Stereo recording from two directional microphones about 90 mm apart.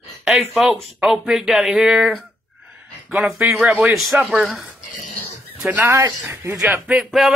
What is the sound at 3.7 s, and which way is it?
Speech, 20° right (ahead or behind).